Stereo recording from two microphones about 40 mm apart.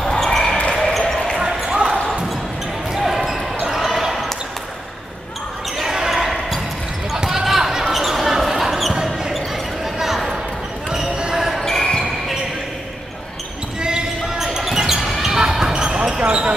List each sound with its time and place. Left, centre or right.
0.1 s basketball bounce: centre
1.4 s basketball bounce: centre
3.0 s basketball bounce: centre
5.8 s basketball bounce: centre
9.9 s a sound: centre
11.1 s basketball bounce: centre
11.6 s basketball bounce: centre
13.7 s basketball bounce: centre
15.7 s basketball bounce: right